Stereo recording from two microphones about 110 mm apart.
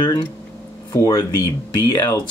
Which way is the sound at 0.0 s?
40° left (ahead or behind).